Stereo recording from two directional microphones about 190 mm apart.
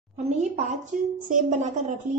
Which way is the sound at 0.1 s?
40° right (ahead or behind).